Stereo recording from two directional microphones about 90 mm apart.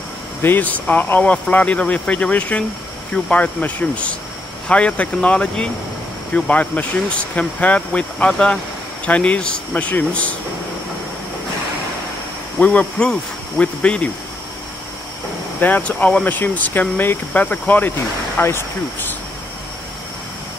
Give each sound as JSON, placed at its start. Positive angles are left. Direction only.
{"t": 0.4, "sound": "speech", "side_deg": 20}
{"t": 12.5, "sound": "speech", "side_deg": 15}
{"t": 15.6, "sound": "speech", "side_deg": 20}